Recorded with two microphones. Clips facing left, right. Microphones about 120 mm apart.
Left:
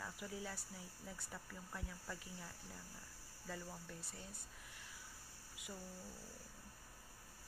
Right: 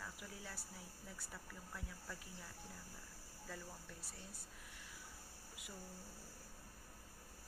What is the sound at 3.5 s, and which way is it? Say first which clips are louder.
Speech: left 3 dB; 5° right (ahead or behind).